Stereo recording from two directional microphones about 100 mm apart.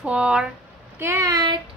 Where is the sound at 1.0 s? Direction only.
25° right (ahead or behind).